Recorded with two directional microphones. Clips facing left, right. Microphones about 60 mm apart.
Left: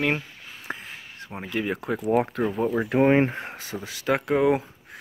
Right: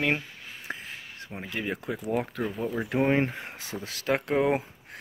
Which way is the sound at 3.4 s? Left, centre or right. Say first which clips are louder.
Left 3 dB; left.